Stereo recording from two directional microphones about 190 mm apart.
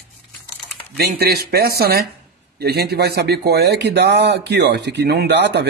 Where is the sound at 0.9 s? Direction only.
55° right (ahead or behind).